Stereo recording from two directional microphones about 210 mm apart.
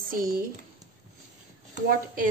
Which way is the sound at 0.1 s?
45° right (ahead or behind).